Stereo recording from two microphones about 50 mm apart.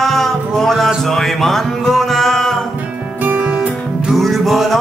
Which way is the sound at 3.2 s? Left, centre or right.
Right.